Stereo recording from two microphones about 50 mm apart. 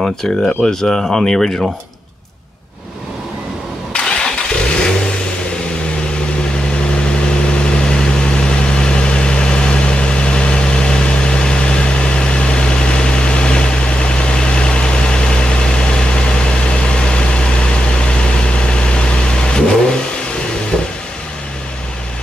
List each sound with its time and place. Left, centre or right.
0.0 s speech: centre
3.9 s vehicle: centre
7.8 s vehicle: centre